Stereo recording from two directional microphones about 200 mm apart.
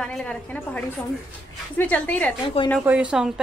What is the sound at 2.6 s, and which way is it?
Speech, 30° left (ahead or behind).